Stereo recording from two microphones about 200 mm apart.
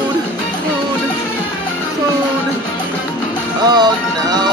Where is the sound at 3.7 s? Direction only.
20° right (ahead or behind).